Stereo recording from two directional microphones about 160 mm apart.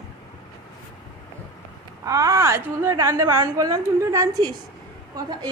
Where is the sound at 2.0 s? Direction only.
20° right (ahead or behind).